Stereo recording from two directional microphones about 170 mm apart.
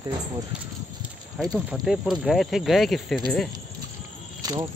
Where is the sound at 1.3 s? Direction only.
Centre (ahead or behind).